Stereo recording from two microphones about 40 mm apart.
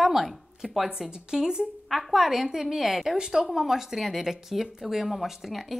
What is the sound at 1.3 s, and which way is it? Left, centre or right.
Speech, centre.